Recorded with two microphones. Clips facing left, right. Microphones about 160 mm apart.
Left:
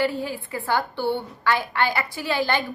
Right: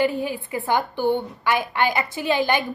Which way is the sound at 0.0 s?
20° right (ahead or behind).